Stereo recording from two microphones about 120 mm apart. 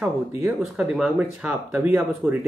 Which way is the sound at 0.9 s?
5° right (ahead or behind).